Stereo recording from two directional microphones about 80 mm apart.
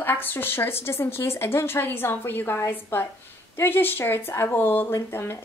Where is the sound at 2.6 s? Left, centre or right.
Left.